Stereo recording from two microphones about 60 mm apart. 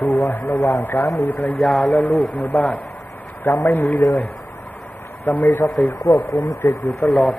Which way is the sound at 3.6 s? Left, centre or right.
Left.